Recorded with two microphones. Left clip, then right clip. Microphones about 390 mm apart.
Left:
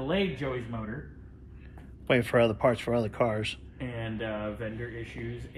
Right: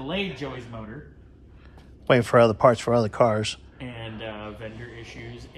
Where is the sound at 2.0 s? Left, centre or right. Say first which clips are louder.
Right 7 dB; centre.